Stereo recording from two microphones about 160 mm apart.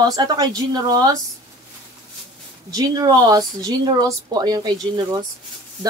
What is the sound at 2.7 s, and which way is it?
Speech, 25° right (ahead or behind).